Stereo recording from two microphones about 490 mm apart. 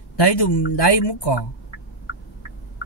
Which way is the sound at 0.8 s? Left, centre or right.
Left.